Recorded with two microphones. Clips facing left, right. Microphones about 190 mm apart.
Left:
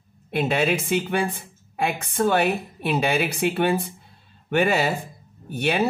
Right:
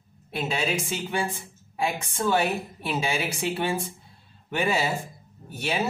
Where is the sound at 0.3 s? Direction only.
55° left (ahead or behind).